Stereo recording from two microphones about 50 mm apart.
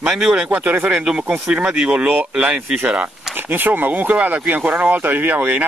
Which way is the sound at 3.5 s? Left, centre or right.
Right.